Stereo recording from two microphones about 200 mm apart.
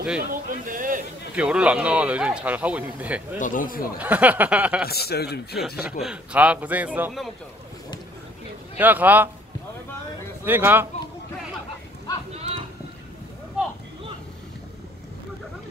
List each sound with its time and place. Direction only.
0.3 s speech: 45° right (ahead or behind)
1.3 s a man's voice: 5° right (ahead or behind)
3.3 s a man's voice: 40° left (ahead or behind)
4.0 s a man's voice: 10° right (ahead or behind)
4.8 s a man's voice: 50° left (ahead or behind)
5.8 s a man's voice: 5° right (ahead or behind)
8.7 s a man's voice: 10° right (ahead or behind)
10.4 s a man's voice: 10° right (ahead or behind)
12.4 s a sound: 30° right (ahead or behind)